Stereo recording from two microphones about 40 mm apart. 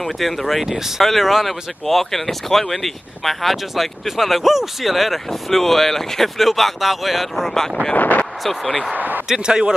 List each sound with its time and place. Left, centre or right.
0.0 s speech: centre
7.4 s speech: centre
7.9 s speech: left
8.5 s speech: centre
8.9 s speech: right
9.3 s speech: centre